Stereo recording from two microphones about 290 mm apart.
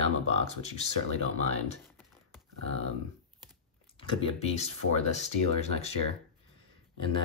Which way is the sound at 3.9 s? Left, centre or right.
Left.